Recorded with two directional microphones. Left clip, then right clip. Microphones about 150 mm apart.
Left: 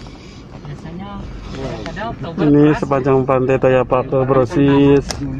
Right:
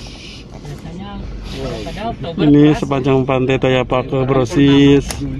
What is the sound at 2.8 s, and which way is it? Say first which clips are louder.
A man's voice: left 1 dB; 20° right (ahead or behind).